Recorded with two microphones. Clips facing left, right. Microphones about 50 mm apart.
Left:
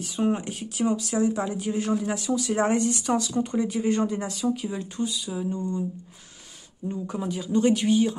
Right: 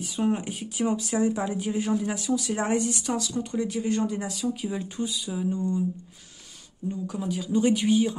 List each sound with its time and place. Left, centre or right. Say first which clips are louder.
0.0 s a woman's voice: left 1 dB; centre
6.9 s a woman's voice: even; centre